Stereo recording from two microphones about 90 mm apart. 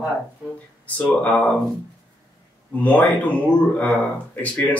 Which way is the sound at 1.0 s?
20° left (ahead or behind).